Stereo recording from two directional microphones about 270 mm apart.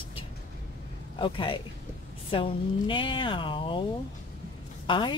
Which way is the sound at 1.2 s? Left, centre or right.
Centre.